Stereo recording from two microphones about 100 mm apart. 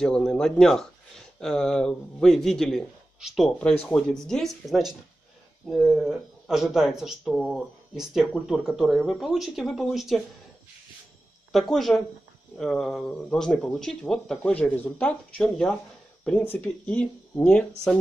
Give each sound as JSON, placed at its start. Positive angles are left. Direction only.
{"t": 0.0, "sound": "speech", "side_deg": 5}
{"t": 7.3, "sound": "speech", "side_deg": 5}
{"t": 7.9, "sound": "speech", "side_deg": -5}
{"t": 11.7, "sound": "speech", "side_deg": 0}